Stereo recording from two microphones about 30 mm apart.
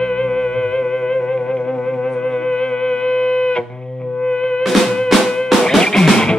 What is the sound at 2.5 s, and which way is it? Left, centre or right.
Music, left.